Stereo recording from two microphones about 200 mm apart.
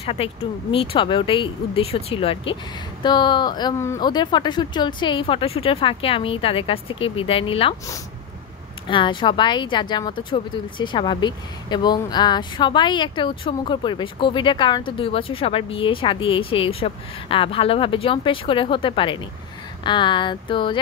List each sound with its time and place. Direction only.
0.0 s speech: 30° left (ahead or behind)
8.8 s speech: 25° left (ahead or behind)